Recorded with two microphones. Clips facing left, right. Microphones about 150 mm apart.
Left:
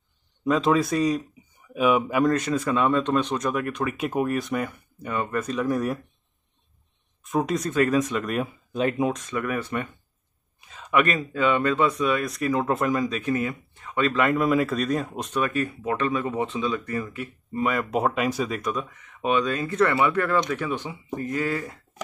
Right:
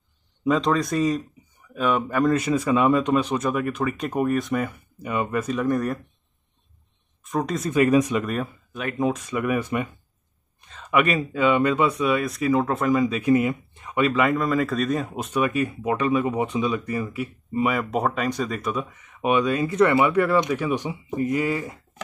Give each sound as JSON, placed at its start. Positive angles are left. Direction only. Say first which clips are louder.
{"t": 0.4, "sound": "speech", "louder": "even", "side_deg": 0}
{"t": 1.7, "sound": "speech", "louder": "left 2 dB", "side_deg": 10}
{"t": 2.2, "sound": "speech", "louder": "right 2 dB", "side_deg": -10}
{"t": 7.2, "sound": "speech", "louder": "left 1 dB", "side_deg": 0}
{"t": 8.2, "sound": "speech", "louder": "even", "side_deg": 0}
{"t": 9.1, "sound": "speech", "louder": "right 3 dB", "side_deg": -10}
{"t": 10.6, "sound": "speech", "louder": "right 1 dB", "side_deg": 5}
{"t": 13.3, "sound": "speech", "louder": "right 6 dB", "side_deg": -20}
{"t": 14.2, "sound": "speech", "louder": "even", "side_deg": 5}